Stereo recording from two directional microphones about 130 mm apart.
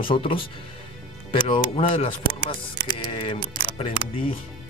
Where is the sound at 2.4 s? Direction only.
30° left (ahead or behind).